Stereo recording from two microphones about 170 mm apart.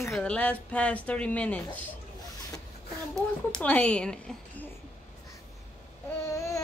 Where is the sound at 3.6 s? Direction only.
5° left (ahead or behind).